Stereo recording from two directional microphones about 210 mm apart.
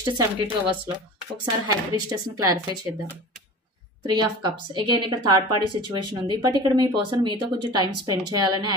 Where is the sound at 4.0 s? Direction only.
20° right (ahead or behind).